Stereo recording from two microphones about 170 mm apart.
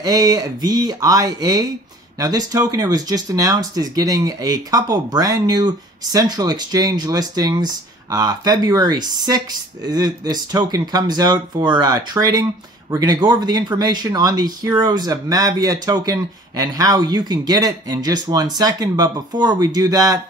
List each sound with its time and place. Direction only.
0.0 s speech: 20° right (ahead or behind)